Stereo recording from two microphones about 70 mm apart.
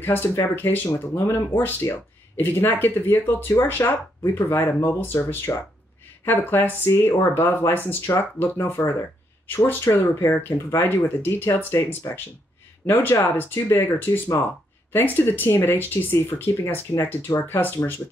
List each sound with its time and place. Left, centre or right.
0.0 s speech: left
17.3 s speech: left
17.6 s speech: left